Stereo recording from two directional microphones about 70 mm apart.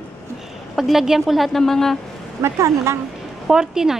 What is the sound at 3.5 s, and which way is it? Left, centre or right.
Speech, centre.